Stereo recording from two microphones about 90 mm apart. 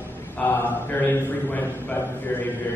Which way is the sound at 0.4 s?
25° left (ahead or behind).